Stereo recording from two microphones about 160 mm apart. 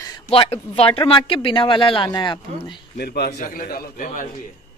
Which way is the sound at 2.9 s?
85° left.